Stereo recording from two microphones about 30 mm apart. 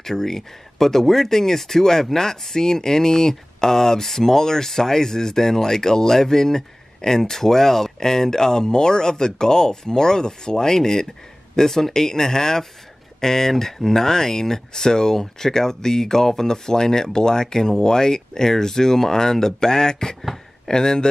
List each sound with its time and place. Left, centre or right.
0.0 s speech: centre